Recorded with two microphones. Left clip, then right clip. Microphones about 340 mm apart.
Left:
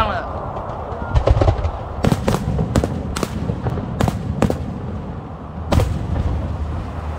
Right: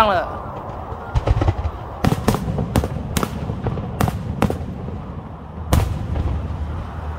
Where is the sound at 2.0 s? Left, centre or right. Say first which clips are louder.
Left 1 dB; centre.